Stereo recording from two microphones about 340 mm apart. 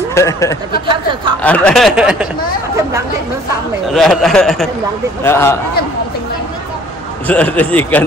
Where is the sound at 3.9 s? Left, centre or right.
Centre.